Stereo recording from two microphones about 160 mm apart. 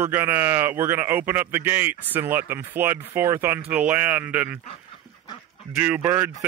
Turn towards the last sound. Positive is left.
turn(degrees=-10)  # may be behind; listen again after turning